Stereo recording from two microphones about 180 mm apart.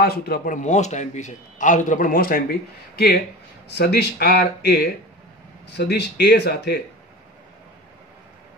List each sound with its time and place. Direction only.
0.0 s a man's voice: 55° left (ahead or behind)
3.6 s speech: 65° left (ahead or behind)